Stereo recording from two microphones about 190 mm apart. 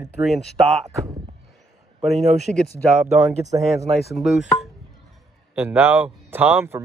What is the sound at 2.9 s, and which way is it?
Speech, centre (ahead or behind).